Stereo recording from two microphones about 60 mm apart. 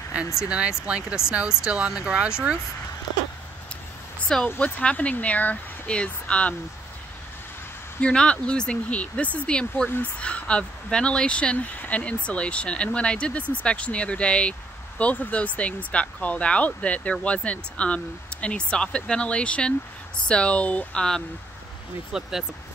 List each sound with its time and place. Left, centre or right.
0.5 s speech: centre
4.5 s speech: left
8.0 s speech: centre
11.5 s speech: left
22.1 s speech: centre